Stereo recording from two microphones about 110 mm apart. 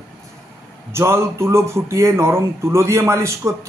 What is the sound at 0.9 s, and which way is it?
Speech, 25° right (ahead or behind).